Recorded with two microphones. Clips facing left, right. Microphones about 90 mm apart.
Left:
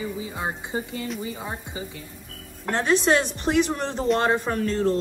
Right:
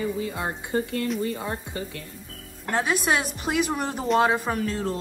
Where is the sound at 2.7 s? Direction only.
5° right (ahead or behind).